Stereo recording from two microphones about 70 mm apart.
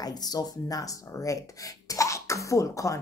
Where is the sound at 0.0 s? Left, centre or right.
Left.